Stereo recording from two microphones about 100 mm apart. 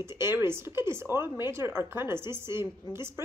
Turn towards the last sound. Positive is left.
turn(degrees=-25)  # may be behind; listen again after turning